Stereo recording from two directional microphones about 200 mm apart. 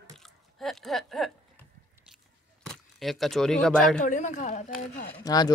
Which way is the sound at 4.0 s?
40° left (ahead or behind).